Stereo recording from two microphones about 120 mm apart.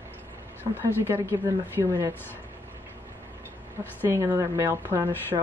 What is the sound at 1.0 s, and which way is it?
A woman's voice, 20° right (ahead or behind).